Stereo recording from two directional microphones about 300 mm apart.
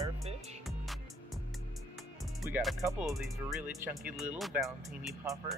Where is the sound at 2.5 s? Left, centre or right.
Centre.